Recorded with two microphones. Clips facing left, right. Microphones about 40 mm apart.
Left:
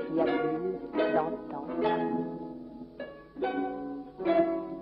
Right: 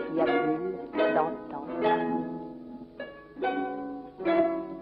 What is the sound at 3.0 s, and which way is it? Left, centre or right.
Music, centre.